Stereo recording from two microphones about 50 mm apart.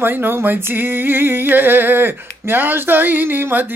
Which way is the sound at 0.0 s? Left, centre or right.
Right.